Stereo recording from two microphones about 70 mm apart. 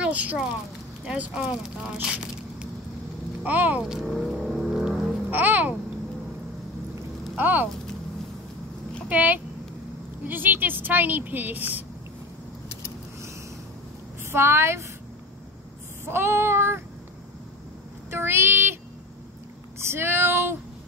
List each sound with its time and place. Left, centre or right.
0.0 s a sound: right
1.1 s a woman's voice: centre
3.8 s speech: centre
4.4 s vehicle: centre
5.3 s babbling: right
7.3 s speech: right
9.1 s a woman's voice: right
14.3 s child singing: right
16.1 s child singing: right
18.1 s child singing: right
19.9 s child singing: right